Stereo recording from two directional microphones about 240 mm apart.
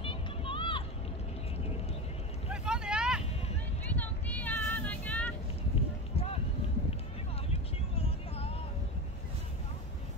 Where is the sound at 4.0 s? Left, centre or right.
Centre.